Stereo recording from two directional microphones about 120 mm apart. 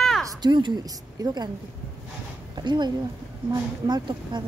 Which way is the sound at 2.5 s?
40° right (ahead or behind).